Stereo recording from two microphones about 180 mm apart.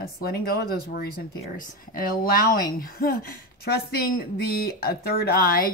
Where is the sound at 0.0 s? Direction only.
55° left (ahead or behind).